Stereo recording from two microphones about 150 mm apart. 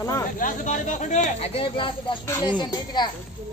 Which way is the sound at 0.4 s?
55° left (ahead or behind).